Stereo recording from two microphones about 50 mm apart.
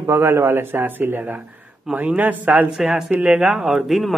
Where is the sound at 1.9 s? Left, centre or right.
Right.